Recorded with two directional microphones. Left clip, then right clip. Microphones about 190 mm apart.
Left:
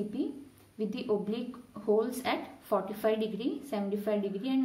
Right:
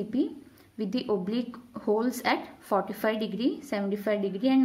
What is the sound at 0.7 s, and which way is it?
A woman's voice, 30° right (ahead or behind).